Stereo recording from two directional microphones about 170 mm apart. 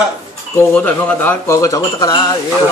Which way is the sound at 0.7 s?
10° left (ahead or behind).